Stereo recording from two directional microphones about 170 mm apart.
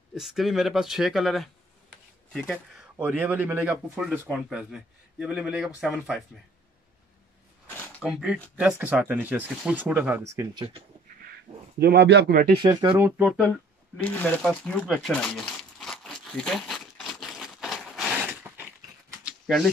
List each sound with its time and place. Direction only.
0.1 s speech: centre (ahead or behind)
8.0 s speech: 5° right (ahead or behind)
11.8 s speech: 80° right
12.5 s speech: 30° right (ahead or behind)
12.9 s speech: 10° right (ahead or behind)
14.0 s crumpling: 10° left (ahead or behind)
18.4 s a sound: 10° right (ahead or behind)
19.4 s speech: centre (ahead or behind)